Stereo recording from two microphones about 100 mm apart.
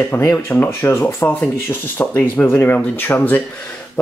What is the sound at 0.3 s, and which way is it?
Speech, 20° left (ahead or behind).